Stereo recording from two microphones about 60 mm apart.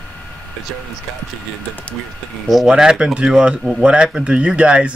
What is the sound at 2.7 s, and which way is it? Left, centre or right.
Speech, centre.